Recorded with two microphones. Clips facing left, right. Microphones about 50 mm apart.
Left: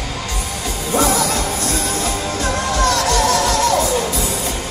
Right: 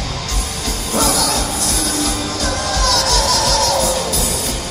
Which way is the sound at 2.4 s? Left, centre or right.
Left.